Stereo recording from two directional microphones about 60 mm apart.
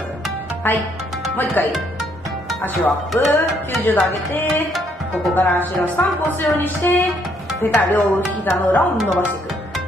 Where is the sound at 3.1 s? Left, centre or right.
Left.